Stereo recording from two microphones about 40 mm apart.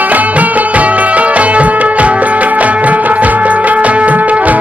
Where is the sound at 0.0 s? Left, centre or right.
Right.